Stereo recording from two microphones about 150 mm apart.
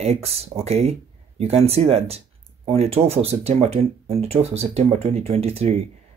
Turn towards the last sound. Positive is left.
turn(degrees=-45)  # may be behind; listen again after turning